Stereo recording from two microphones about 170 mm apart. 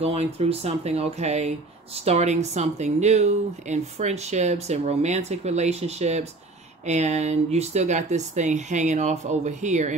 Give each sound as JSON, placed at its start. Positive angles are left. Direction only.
{"t": 0.0, "sound": "speech", "side_deg": -40}